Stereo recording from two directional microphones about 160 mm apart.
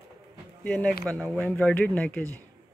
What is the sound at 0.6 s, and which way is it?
Speech, 10° left (ahead or behind).